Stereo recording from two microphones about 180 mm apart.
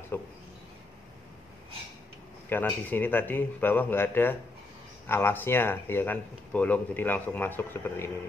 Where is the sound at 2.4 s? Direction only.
10° left (ahead or behind).